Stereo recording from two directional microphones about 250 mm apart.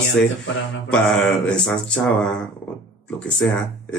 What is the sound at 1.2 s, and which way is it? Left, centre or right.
Speech, centre.